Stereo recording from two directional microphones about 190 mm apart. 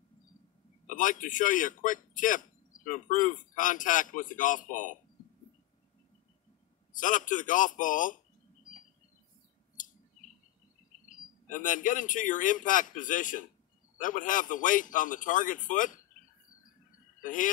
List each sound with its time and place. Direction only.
0.8 s a man's voice: 45° left (ahead or behind)
7.0 s a man's voice: 45° left (ahead or behind)
9.8 s bird: 45° left (ahead or behind)
11.1 s a man's voice: 40° left (ahead or behind)
17.2 s speech: 45° left (ahead or behind)